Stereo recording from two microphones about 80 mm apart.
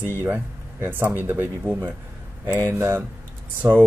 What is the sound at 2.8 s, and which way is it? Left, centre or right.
Speech, right.